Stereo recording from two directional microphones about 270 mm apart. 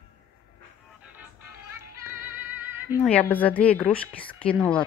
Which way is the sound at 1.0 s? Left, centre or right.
Centre.